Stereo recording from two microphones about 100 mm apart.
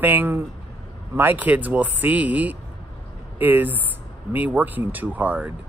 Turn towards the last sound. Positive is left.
turn(degrees=-15)  # may be behind; listen again after turning